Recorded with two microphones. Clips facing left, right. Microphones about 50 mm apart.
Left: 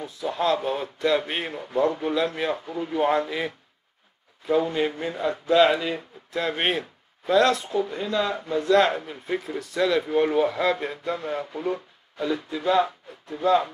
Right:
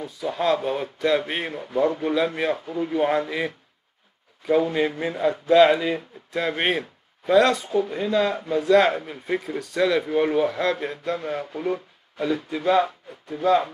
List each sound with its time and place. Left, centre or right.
0.0 s speech: centre
4.6 s speech: centre
12.4 s speech: centre